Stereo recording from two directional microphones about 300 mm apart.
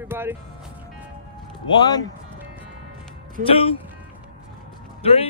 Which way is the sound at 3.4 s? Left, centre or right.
Right.